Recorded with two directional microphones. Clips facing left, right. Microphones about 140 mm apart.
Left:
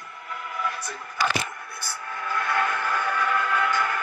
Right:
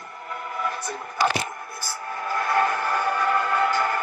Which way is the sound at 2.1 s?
35° right (ahead or behind).